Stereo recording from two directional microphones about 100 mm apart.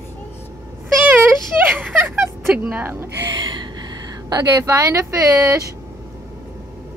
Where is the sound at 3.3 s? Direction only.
50° right (ahead or behind); by 5.7 s 35° right (ahead or behind).